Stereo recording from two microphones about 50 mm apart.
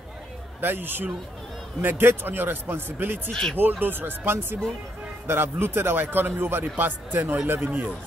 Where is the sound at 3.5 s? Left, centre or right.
Right.